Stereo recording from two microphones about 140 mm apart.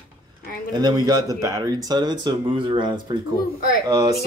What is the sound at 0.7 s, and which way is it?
Speech, 30° right (ahead or behind).